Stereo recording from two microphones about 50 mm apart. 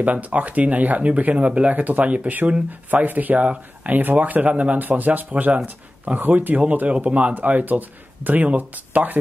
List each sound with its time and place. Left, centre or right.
0.0 s speech: right